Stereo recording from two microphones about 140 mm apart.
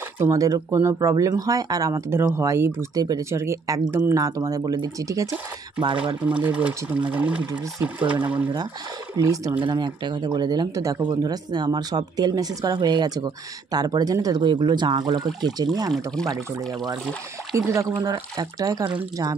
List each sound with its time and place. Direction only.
0.2 s speech: 25° right (ahead or behind)
6.2 s speech: 10° right (ahead or behind)
9.1 s speech: 25° right (ahead or behind)
17.6 s speech: 20° right (ahead or behind)